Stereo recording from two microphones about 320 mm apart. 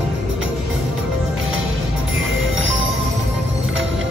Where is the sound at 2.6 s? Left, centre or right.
Right.